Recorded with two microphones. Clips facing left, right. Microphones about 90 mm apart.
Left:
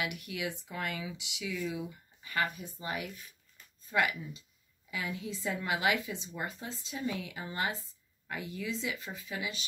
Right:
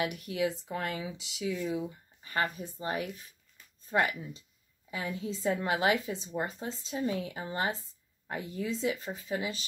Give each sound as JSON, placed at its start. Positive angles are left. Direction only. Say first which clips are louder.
{"t": 0.0, "sound": "a woman's voice", "louder": "right 6 dB", "side_deg": -40}